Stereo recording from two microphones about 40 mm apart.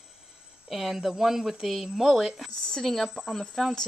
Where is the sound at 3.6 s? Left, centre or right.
Centre.